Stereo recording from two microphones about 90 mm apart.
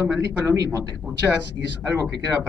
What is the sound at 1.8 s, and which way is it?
Speech, 35° right (ahead or behind).